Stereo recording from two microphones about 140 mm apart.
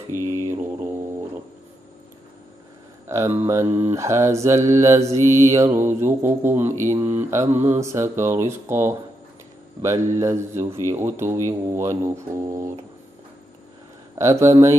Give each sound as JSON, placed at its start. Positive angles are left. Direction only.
{"t": 0.2, "sound": "mantra", "side_deg": -20}
{"t": 3.1, "sound": "mantra", "side_deg": -20}
{"t": 10.9, "sound": "speech", "side_deg": -15}
{"t": 11.4, "sound": "mantra", "side_deg": -20}
{"t": 14.1, "sound": "mantra", "side_deg": -20}